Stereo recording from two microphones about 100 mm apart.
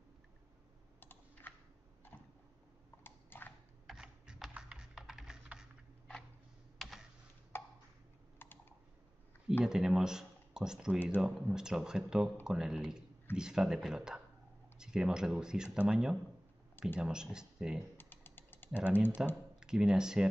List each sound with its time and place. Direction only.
1.5 s a sound: 20° left (ahead or behind)
3.0 s typing: 20° left (ahead or behind)
3.8 s computer keyboard: 5° right (ahead or behind)
6.8 s computer keyboard: centre (ahead or behind)
7.5 s ping: 20° left (ahead or behind)
8.4 s computer keyboard: 20° left (ahead or behind)
9.7 s speech: 5° right (ahead or behind)
17.9 s typing: 20° left (ahead or behind)
19.2 s speech: 5° right (ahead or behind)